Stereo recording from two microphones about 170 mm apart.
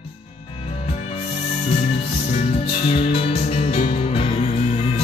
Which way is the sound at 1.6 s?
35° left (ahead or behind).